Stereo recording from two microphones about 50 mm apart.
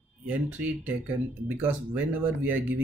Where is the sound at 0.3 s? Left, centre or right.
Right.